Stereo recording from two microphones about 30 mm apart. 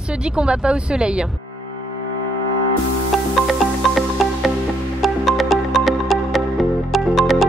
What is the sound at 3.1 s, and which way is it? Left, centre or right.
Music, centre.